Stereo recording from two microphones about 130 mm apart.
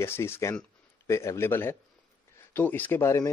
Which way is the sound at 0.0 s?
20° left (ahead or behind).